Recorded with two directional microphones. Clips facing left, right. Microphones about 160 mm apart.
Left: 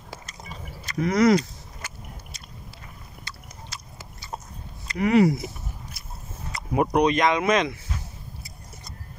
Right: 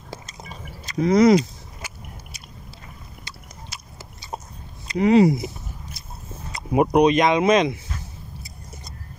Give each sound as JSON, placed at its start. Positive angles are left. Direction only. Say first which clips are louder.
{"t": 0.5, "sound": "a sound", "louder": "left 1 dB", "side_deg": -20}
{"t": 3.3, "sound": "biting", "louder": "even", "side_deg": -15}
{"t": 4.8, "sound": "speech", "louder": "right 3 dB", "side_deg": -25}
{"t": 6.5, "sound": "speech", "louder": "right 4 dB", "side_deg": -20}